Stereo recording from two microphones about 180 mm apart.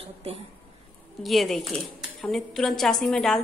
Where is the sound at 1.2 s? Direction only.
Centre (ahead or behind).